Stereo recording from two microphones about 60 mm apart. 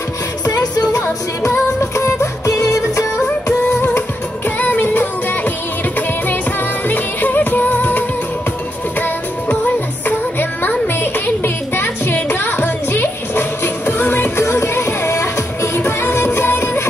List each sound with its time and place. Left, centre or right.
0.5 s music: left
1.5 s music: left
2.0 s music: left
4.6 s music: left
6.9 s music: left
10.6 s music: left